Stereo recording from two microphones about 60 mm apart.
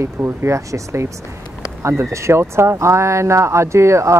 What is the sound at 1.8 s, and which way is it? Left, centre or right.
Speech, right.